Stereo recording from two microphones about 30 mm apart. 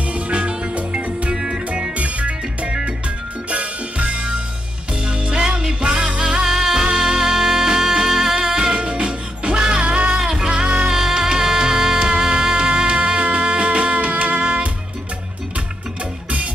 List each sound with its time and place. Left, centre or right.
0.1 s music: right
1.3 s music: centre
2.0 s music: right
10.1 s music: right